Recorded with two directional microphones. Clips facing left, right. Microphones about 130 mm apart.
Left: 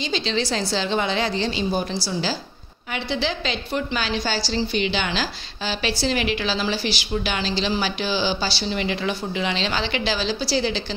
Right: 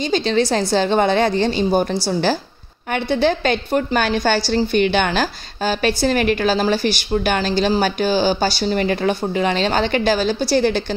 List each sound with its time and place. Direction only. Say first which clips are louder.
0.0 s a woman's voice: right 7 dB; 50° right (ahead or behind)